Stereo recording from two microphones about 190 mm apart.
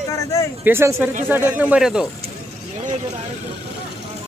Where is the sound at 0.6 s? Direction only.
10° right (ahead or behind).